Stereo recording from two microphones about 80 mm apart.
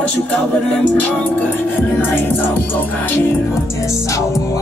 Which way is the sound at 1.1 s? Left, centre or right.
Centre.